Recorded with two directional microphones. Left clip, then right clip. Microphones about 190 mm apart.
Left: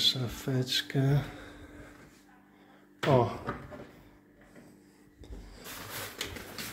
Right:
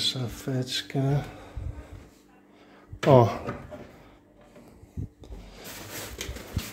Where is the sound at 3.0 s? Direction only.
35° right (ahead or behind).